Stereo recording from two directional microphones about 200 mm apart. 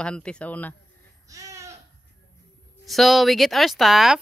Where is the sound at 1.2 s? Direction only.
15° right (ahead or behind).